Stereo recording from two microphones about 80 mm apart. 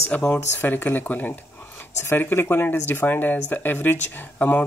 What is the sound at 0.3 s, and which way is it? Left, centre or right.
Speech, left.